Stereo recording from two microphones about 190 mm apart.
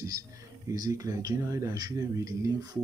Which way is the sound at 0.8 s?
15° right (ahead or behind).